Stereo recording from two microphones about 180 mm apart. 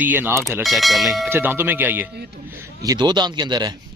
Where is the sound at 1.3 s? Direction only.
10° right (ahead or behind).